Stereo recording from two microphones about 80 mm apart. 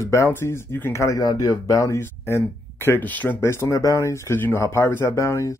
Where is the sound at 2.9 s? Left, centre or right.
Left.